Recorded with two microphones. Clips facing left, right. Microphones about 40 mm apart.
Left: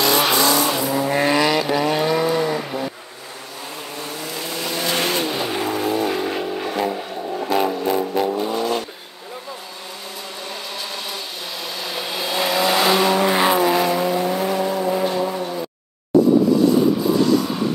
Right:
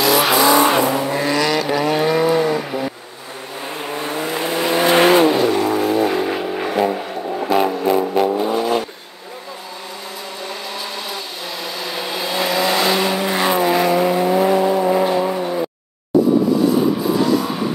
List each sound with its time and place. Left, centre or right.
0.0 s vehicle: centre
0.7 s vehicle: right
1.1 s vehicle: centre
1.7 s vehicle: centre
3.8 s vehicle: right
5.4 s vehicle: centre
11.6 s vehicle: centre
13.6 s vehicle: centre
16.6 s vehicle: centre